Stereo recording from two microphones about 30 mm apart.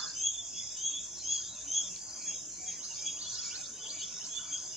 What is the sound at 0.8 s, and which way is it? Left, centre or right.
Bird, centre.